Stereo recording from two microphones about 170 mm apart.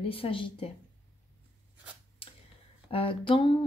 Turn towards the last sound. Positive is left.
turn(degrees=30)  # may be behind; listen again after turning